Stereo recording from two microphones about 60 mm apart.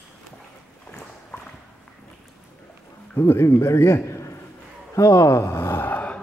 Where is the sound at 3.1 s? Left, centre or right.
Left.